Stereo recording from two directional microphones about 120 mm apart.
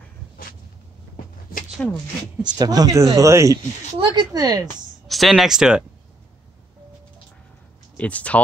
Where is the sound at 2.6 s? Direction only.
30° right (ahead or behind).